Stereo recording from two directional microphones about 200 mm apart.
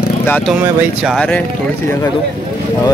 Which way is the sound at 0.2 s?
10° left (ahead or behind).